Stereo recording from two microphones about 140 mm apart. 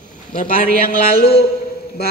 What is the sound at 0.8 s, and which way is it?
Speech, 90° left.